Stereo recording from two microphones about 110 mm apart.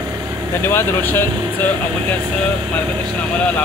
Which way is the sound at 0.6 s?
20° left (ahead or behind).